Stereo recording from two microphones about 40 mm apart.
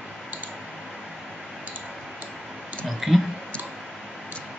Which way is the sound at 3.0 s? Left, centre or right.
Centre.